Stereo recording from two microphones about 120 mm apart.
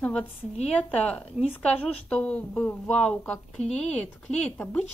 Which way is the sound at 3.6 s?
65° left (ahead or behind).